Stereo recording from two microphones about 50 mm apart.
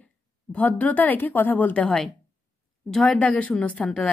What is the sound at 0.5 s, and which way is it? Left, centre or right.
Speech, left.